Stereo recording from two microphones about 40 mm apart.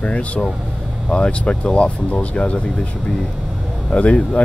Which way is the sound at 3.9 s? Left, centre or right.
Left.